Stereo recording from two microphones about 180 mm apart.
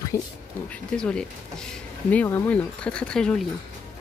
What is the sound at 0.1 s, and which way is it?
Speech, 15° left (ahead or behind).